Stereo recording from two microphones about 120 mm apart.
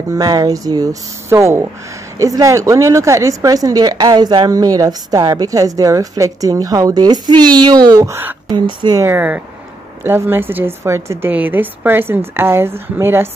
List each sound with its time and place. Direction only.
0.1 s speech: 30° right (ahead or behind)
9.0 s speech: 15° right (ahead or behind)